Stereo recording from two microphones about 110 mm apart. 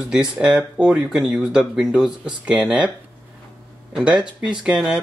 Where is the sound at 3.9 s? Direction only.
10° right (ahead or behind).